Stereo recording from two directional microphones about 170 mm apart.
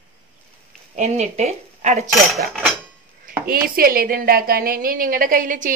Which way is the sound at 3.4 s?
60° right (ahead or behind).